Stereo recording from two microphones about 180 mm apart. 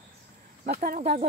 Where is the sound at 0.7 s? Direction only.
45° right (ahead or behind).